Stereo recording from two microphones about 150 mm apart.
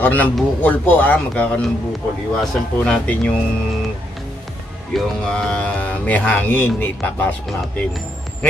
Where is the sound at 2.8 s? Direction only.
5° left (ahead or behind).